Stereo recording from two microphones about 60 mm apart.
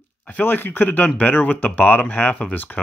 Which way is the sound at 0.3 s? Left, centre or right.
Left.